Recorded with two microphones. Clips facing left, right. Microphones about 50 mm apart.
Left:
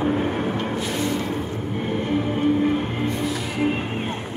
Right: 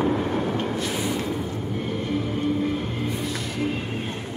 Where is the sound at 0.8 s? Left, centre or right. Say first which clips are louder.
Left 2 dB; centre.